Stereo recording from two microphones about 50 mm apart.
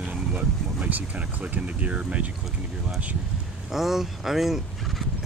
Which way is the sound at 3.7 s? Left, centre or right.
Centre.